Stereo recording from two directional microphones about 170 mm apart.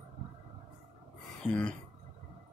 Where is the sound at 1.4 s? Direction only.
5° left (ahead or behind).